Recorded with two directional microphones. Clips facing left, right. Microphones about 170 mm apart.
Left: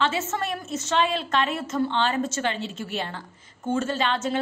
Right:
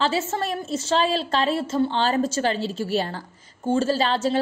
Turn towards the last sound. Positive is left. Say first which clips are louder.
# right 4 dB
turn(degrees=-35)  # may be behind; listen again after turning